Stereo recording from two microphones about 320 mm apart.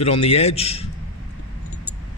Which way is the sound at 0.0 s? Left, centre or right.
Centre.